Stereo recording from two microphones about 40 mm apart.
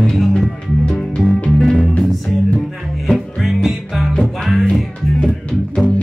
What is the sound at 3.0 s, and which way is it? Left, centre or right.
Music, centre.